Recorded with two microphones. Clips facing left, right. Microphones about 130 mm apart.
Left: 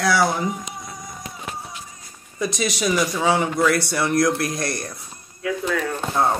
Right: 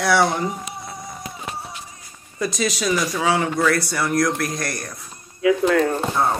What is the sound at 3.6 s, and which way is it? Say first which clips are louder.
Speech: even; 25° left (ahead or behind).